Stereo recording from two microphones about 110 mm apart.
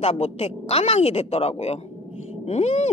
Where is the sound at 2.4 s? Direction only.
85° left.